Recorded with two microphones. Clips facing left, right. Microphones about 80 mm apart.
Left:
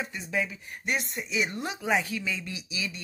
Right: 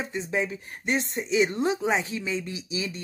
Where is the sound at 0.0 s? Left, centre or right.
Right.